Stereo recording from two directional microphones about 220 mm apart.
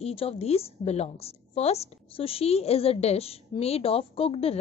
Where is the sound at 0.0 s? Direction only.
25° left (ahead or behind).